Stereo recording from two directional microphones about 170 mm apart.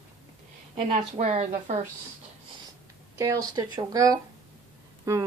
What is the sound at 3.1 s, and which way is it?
Speech, 20° right (ahead or behind).